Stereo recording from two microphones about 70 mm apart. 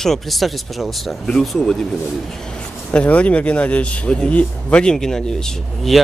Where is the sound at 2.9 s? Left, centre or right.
Centre.